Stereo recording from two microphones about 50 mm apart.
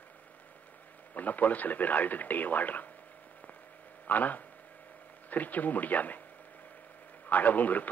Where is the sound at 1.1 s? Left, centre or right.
Left.